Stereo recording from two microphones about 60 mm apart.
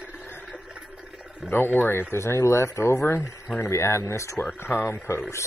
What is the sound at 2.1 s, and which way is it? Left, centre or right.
Speech, left.